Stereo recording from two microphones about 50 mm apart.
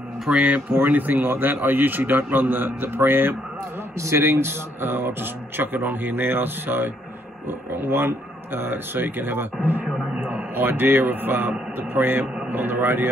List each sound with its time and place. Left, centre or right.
0.3 s speech: right
0.7 s a man's voice: right